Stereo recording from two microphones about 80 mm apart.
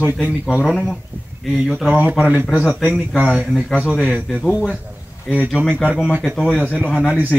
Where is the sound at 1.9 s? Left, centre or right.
Centre.